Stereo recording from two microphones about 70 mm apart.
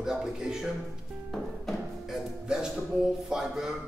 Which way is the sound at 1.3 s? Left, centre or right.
Centre.